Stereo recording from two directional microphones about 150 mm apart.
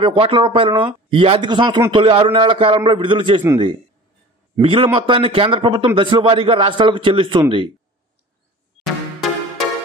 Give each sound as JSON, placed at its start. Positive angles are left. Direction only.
{"t": 0.0, "sound": "speech", "side_deg": -35}
{"t": 4.6, "sound": "speech", "side_deg": -40}
{"t": 8.8, "sound": "music", "side_deg": 0}